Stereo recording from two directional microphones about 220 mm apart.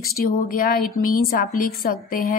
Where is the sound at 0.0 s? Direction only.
40° left (ahead or behind).